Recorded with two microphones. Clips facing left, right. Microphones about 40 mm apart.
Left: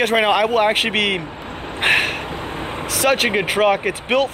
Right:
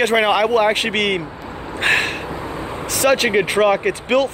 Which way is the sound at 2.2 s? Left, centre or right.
Left.